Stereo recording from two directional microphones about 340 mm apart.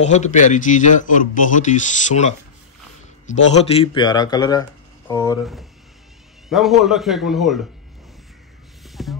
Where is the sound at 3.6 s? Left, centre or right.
Centre.